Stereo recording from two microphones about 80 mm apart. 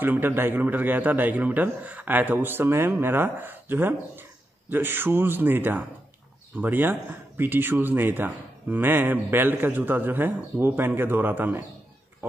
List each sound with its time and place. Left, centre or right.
0.0 s speech: right